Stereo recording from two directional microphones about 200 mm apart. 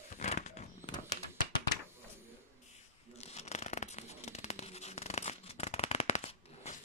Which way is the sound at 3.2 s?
35° left (ahead or behind).